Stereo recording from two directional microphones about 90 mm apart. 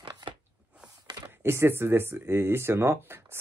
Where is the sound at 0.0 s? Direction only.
65° right (ahead or behind).